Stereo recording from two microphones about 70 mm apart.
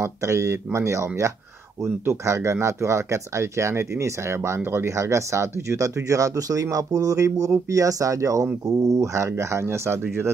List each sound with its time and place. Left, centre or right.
0.0 s speech: right